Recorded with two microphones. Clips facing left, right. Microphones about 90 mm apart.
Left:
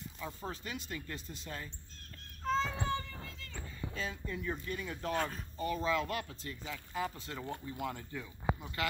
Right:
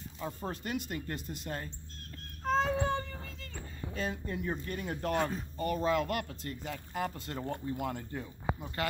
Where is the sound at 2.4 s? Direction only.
55° right (ahead or behind).